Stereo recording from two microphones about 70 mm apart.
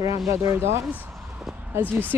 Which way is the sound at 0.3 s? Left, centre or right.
Right.